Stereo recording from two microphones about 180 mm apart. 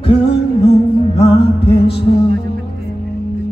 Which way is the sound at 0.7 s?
35° left (ahead or behind).